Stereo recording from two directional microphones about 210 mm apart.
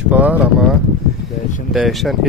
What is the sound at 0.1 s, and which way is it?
Speech, 5° right (ahead or behind).